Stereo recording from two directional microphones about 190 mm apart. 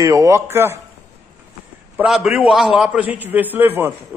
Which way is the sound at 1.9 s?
5° right (ahead or behind).